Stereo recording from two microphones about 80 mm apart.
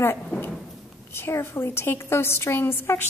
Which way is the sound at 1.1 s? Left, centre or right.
Left.